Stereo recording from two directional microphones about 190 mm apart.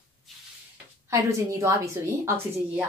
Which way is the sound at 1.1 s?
15° right (ahead or behind).